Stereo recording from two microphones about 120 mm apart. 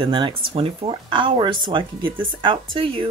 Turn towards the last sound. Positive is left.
turn(degrees=-45)  # may be behind; listen again after turning